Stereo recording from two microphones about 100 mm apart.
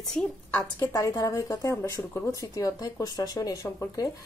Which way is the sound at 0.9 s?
40° left (ahead or behind).